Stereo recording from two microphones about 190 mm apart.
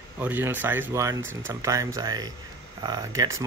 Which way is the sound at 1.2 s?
90° right.